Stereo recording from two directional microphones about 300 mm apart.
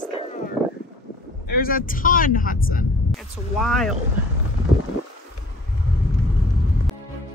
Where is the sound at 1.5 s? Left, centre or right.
Left.